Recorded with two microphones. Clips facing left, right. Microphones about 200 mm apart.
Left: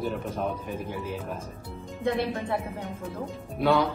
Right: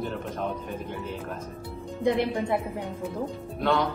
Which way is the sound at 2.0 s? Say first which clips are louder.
Right 3 dB; 15° right (ahead or behind).